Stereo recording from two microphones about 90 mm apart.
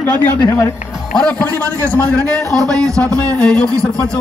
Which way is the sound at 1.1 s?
10° left (ahead or behind).